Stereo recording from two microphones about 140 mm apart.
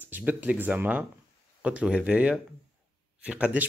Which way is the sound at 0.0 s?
10° right (ahead or behind).